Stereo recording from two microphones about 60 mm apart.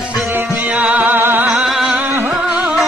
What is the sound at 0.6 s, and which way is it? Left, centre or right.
Music, right.